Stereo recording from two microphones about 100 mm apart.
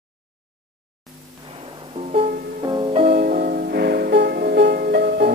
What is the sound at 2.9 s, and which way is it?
Music, 75° right (ahead or behind).